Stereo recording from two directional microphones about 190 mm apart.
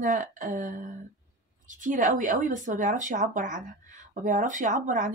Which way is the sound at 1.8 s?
45° right (ahead or behind).